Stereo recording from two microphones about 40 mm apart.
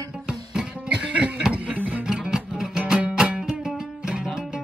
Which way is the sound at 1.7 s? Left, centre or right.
Right.